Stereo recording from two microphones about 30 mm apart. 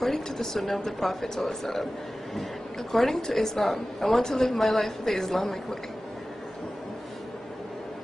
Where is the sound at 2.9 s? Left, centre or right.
Centre.